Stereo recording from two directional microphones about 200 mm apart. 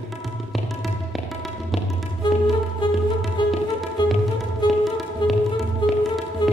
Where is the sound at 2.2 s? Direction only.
20° left (ahead or behind).